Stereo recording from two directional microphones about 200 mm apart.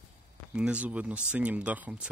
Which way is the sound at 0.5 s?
5° right (ahead or behind).